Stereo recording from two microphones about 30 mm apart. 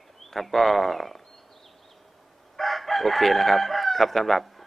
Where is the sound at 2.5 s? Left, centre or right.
Centre.